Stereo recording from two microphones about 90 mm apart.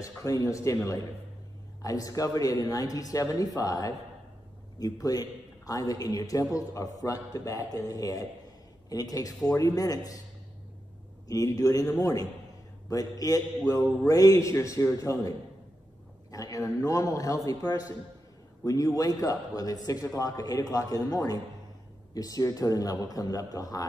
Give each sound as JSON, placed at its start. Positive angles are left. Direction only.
{"t": 0.0, "sound": "a man's voice", "side_deg": 40}
{"t": 1.8, "sound": "a man's voice", "side_deg": 40}
{"t": 11.2, "sound": "a man's voice", "side_deg": 40}